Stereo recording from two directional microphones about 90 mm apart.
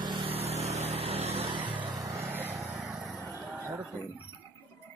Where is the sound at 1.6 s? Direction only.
20° right (ahead or behind).